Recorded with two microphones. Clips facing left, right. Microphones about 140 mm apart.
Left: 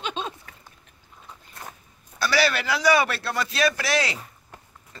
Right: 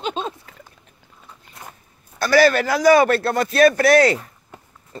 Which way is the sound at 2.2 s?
50° right (ahead or behind).